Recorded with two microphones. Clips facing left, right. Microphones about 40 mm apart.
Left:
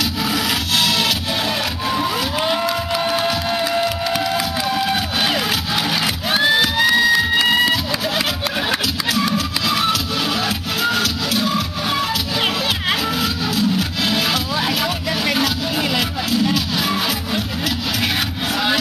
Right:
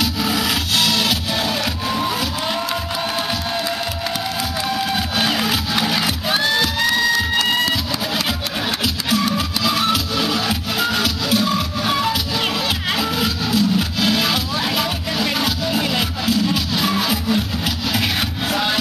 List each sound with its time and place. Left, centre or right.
0.0 s sawing: centre
1.9 s a sound: centre
4.7 s crowd: centre
6.3 s music: centre
6.8 s music: centre
9.2 s music: centre
13.2 s a sound: centre
14.1 s music: centre